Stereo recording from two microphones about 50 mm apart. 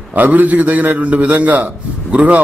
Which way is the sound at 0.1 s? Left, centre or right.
Right.